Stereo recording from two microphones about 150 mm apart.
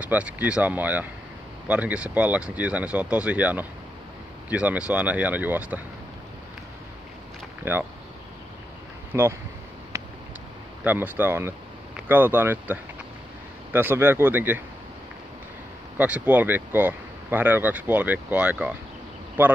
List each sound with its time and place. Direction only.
0.0 s speech: 10° right (ahead or behind)
7.7 s speech: 15° right (ahead or behind)
9.1 s speech: 15° right (ahead or behind)
10.8 s speech: 10° right (ahead or behind)
16.0 s speech: 10° right (ahead or behind)